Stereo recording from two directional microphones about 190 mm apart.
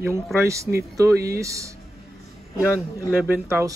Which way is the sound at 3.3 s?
15° right (ahead or behind).